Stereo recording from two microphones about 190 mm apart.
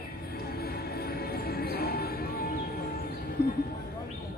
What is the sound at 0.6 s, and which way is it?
Music, 55° left (ahead or behind).